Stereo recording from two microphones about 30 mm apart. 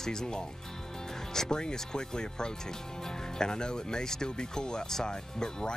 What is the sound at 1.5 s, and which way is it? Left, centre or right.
Speech, left.